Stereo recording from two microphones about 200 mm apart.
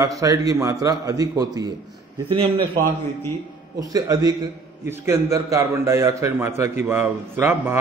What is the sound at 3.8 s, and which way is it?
A man's voice, 20° right (ahead or behind).